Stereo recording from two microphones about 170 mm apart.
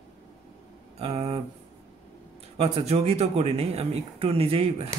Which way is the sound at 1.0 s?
35° right (ahead or behind).